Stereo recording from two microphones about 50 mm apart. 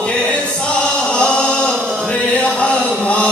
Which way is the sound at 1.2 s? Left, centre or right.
Centre.